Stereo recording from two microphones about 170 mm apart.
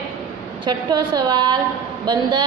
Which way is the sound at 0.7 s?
25° right (ahead or behind).